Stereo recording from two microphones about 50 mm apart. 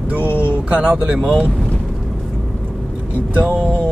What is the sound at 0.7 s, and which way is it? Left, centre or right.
Speech, right.